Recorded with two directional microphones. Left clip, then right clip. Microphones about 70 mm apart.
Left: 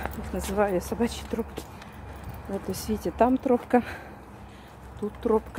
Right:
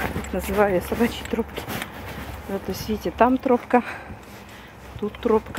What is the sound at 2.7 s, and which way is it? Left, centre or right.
Speech, left.